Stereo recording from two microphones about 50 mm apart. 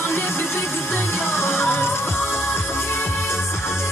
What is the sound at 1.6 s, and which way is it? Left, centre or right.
Music, left.